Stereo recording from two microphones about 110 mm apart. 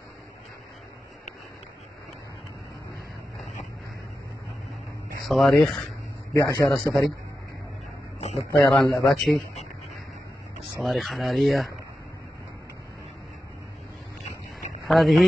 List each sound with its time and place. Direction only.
5.2 s speech: centre (ahead or behind)
6.3 s a man's voice: 30° left (ahead or behind)
8.2 s a sound: 80° left
8.5 s speech: 5° left (ahead or behind)
10.8 s speech: centre (ahead or behind)
14.9 s speech: centre (ahead or behind)